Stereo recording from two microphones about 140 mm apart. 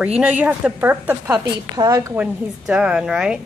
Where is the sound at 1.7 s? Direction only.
25° right (ahead or behind).